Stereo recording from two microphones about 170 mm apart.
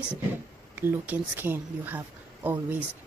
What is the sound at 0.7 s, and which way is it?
Speech, 10° right (ahead or behind).